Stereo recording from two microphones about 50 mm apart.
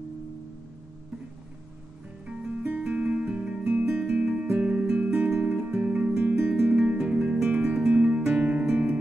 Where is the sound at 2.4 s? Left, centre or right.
Right.